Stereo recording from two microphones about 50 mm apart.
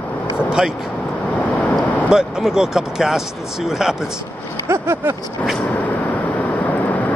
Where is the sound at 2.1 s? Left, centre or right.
Centre.